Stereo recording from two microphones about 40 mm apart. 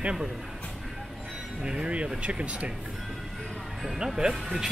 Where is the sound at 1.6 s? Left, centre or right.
Right.